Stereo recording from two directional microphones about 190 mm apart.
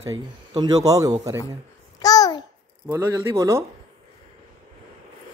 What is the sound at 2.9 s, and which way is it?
Speech, 15° right (ahead or behind).